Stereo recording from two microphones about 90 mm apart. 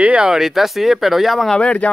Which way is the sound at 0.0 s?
10° right (ahead or behind).